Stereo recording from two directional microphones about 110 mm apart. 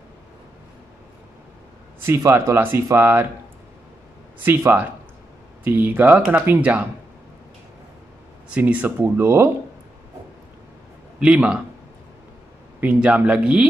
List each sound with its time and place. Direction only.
2.0 s speech: 20° right (ahead or behind)
4.4 s speech: 20° right (ahead or behind)
8.5 s speech: 15° right (ahead or behind)
11.1 s speech: 10° right (ahead or behind)
12.8 s speech: 10° right (ahead or behind)